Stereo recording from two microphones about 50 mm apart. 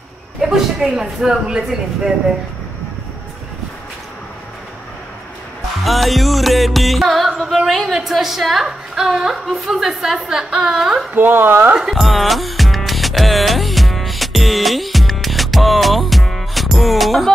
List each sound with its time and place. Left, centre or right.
0.4 s a woman's voice: centre
5.9 s a woman's voice: centre
11.1 s a woman's voice: right
11.8 s music: centre